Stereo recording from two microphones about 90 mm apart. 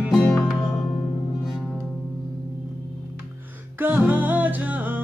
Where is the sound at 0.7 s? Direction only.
10° left (ahead or behind).